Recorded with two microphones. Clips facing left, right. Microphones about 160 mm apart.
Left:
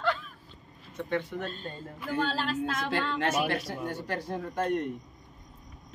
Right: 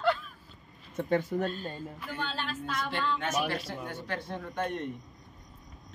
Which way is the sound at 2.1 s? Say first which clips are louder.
Left 8 dB; 90° left.